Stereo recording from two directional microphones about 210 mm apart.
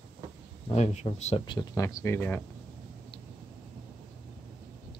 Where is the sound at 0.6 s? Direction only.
30° left (ahead or behind).